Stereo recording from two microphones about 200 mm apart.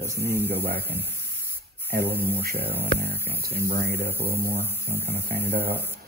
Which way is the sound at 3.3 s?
50° right (ahead or behind).